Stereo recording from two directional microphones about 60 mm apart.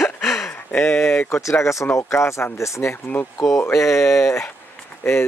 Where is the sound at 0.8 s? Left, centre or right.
Left.